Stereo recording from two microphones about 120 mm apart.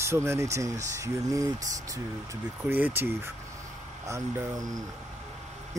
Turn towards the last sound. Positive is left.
turn(degrees=-25)  # may be behind; listen again after turning